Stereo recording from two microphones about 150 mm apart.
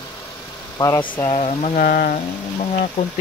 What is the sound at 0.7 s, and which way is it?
Speech, 20° left (ahead or behind).